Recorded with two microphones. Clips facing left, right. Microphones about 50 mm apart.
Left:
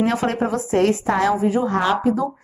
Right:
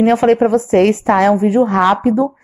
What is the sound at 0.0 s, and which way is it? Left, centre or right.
Speech, right.